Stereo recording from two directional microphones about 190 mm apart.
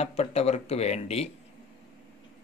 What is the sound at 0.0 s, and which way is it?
Speech, 35° left (ahead or behind).